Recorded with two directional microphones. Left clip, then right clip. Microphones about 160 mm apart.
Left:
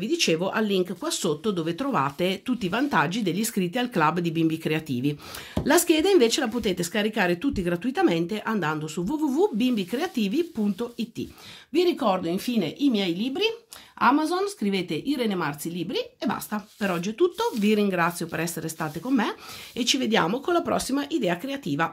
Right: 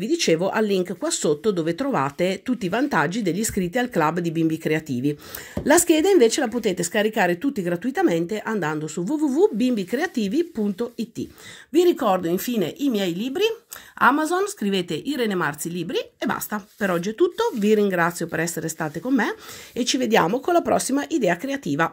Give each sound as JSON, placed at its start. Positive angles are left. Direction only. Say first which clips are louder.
{"t": 0.0, "sound": "speech", "louder": "right 3 dB", "side_deg": -25}
{"t": 11.7, "sound": "speech", "louder": "right 4 dB", "side_deg": -35}